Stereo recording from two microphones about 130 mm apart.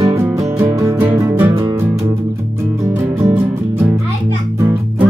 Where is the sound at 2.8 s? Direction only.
20° right (ahead or behind).